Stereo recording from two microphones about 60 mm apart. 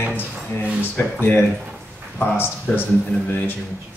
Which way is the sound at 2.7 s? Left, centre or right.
Left.